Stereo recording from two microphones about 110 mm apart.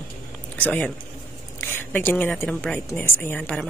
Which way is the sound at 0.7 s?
10° left (ahead or behind).